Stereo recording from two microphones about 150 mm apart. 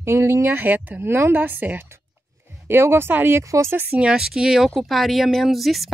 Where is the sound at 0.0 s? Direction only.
15° right (ahead or behind).